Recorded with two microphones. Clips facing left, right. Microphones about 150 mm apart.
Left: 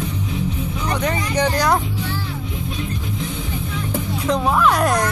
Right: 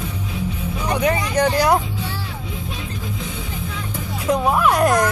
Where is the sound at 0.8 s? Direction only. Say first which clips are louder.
Right 3 dB; 10° right (ahead or behind).